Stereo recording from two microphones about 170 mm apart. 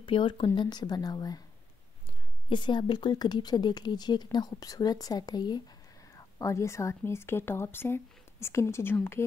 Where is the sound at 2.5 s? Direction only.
25° left (ahead or behind).